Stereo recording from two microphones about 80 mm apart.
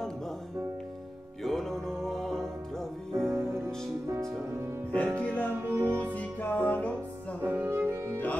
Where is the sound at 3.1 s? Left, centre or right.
Right.